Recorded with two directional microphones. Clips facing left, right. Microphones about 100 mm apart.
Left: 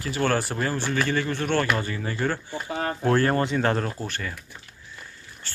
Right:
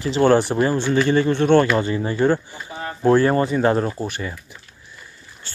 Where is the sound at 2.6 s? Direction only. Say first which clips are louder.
Left 3 dB; 65° left (ahead or behind).